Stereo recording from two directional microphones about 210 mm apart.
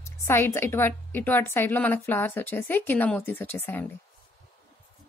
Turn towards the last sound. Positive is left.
turn(degrees=10)  # may be behind; listen again after turning